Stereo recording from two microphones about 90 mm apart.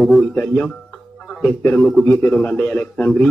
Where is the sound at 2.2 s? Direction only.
15° left (ahead or behind).